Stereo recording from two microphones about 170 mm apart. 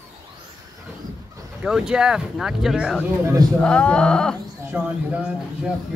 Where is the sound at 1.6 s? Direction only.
5° right (ahead or behind).